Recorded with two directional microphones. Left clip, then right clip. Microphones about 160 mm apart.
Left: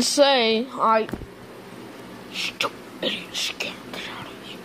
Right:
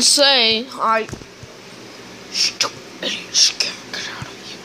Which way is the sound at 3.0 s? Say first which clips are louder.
Right 9 dB; 15° left (ahead or behind).